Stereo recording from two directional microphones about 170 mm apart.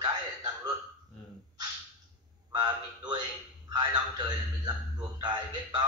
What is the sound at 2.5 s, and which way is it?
A man's voice, 25° right (ahead or behind).